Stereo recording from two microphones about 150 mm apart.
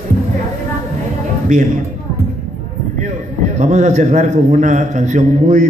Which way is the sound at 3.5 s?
50° right (ahead or behind).